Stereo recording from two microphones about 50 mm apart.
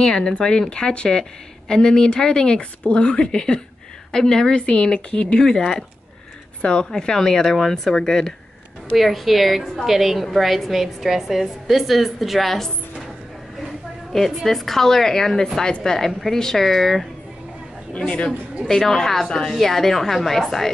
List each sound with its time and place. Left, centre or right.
0.0 s a woman's voice: centre
6.6 s a woman's voice: centre
8.9 s a woman's voice: centre
14.1 s a woman's voice: centre
16.1 s a woman's voice: centre
17.9 s speech: left
18.7 s a woman's voice: centre